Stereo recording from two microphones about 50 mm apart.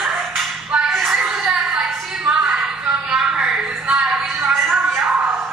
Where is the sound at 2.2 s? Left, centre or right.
Centre.